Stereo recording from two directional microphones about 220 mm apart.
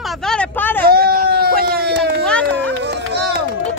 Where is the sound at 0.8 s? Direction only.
45° right (ahead or behind).